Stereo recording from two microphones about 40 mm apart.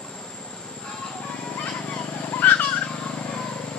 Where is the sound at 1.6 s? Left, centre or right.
Left.